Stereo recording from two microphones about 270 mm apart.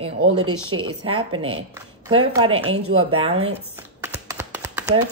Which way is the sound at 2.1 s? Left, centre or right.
Right.